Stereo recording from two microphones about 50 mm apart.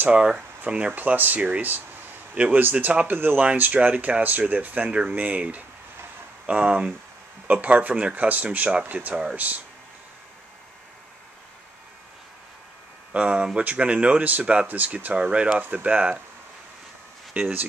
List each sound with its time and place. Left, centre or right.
0.7 s speech: right
8.8 s speech: right
13.1 s speech: right
14.7 s speech: right
17.3 s speech: right